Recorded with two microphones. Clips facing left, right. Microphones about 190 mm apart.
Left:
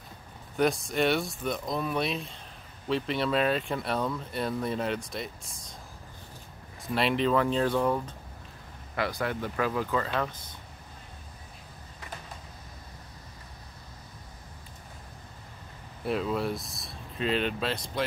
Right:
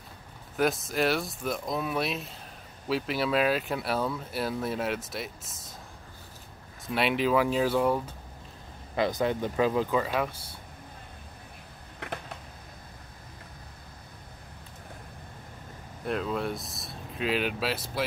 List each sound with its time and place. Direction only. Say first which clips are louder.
0.6 s speech: left 1 dB; centre (ahead or behind)
6.9 s speech: even; 5° right (ahead or behind)
8.9 s speech: right 4 dB; 20° right (ahead or behind)
12.0 s a sound: right 6 dB; 60° right (ahead or behind)
16.1 s speech: left 1 dB; centre (ahead or behind)